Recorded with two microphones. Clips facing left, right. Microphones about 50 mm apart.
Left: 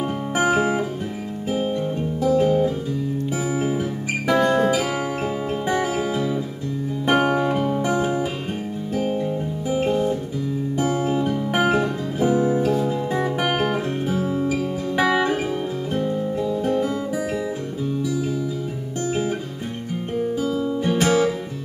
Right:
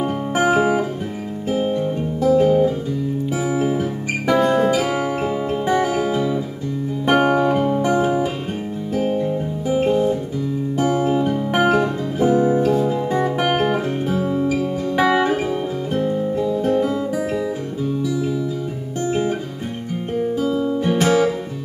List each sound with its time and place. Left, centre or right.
0.0 s music: centre
15.9 s guitar: centre
20.2 s guitar: centre